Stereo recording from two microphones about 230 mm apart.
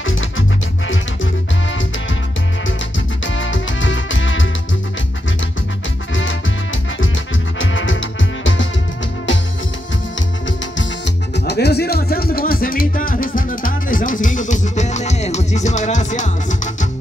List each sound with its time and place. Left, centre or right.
0.0 s music: left
3.3 s music: left
7.5 s music: left
11.3 s music: left